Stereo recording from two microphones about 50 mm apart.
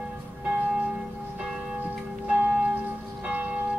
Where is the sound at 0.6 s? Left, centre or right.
Right.